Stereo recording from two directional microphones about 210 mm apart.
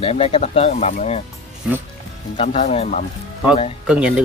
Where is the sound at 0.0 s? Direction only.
30° left (ahead or behind).